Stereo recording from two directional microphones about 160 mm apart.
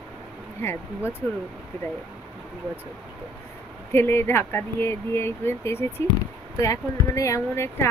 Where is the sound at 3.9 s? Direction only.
15° left (ahead or behind).